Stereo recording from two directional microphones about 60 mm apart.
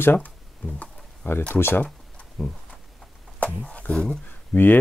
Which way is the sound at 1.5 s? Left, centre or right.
Left.